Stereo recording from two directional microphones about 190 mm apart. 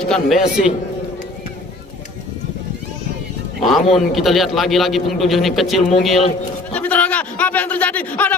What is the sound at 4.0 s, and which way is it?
A man's voice, centre (ahead or behind).